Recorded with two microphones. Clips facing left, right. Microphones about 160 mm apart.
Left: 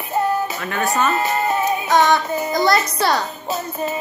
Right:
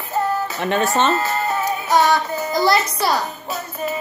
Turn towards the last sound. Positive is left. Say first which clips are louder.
# left 2 dB
turn(degrees=25)  # may be behind; listen again after turning